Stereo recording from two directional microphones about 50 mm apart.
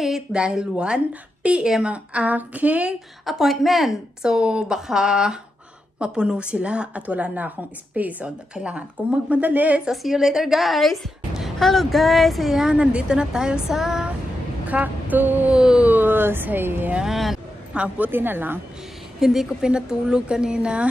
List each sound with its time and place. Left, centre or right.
0.3 s a woman's voice: centre
3.3 s a woman's voice: centre
4.2 s a woman's voice: centre; by 8.3 s right
8.5 s a woman's voice: right
9.4 s speech: right
9.8 s a woman's voice: centre
12.7 s a woman's voice: centre
14.7 s a sound: right
15.5 s a woman's voice: centre
15.8 s speech: right
17.0 s a woman's voice: centre
17.9 s speech: right
19.1 s a woman's voice: centre